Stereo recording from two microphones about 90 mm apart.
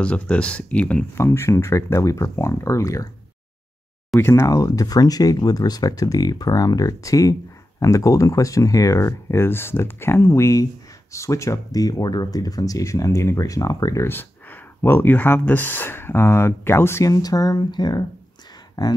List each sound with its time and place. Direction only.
0.0 s speech: 15° left (ahead or behind)
1.1 s speech: 30° left (ahead or behind)
4.4 s speech: 40° left (ahead or behind)
14.0 s speech: 25° left (ahead or behind)
17.1 s speech: 40° left (ahead or behind)